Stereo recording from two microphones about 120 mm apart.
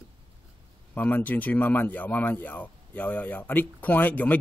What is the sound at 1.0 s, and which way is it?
Speech, 15° left (ahead or behind).